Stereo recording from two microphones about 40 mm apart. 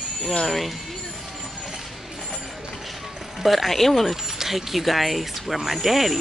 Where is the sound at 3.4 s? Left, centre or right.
Centre.